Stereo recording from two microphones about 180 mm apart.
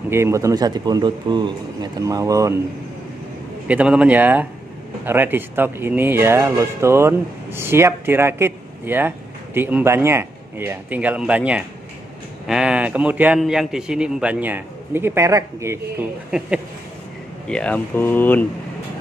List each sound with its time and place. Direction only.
0.1 s speech: 15° right (ahead or behind)
3.6 s speech: 5° right (ahead or behind)
16.3 s speech: 5° right (ahead or behind)
17.5 s speech: 5° left (ahead or behind)